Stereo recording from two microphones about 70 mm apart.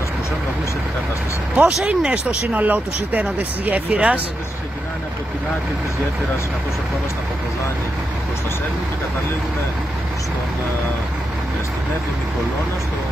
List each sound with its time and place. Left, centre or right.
1.6 s speech: centre
2.5 s speech: right